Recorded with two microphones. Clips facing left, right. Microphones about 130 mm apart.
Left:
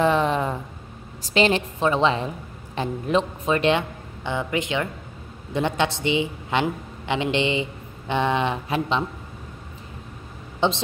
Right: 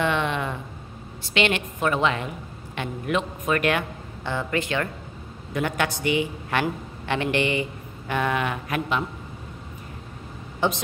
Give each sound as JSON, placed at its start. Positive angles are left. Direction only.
{"t": 0.0, "sound": "a sound", "side_deg": 35}
{"t": 1.3, "sound": "a woman's voice", "side_deg": 35}
{"t": 10.6, "sound": "a woman's voice", "side_deg": 25}